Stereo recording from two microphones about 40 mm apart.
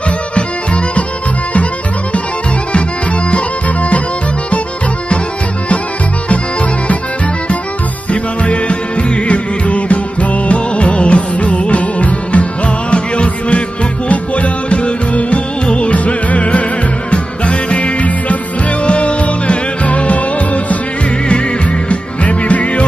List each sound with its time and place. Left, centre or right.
8.1 s music: left
21.8 s music: left